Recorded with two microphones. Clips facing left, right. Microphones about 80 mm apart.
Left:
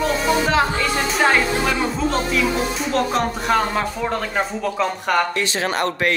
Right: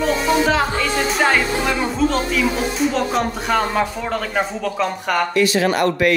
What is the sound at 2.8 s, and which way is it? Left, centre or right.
Speech, centre.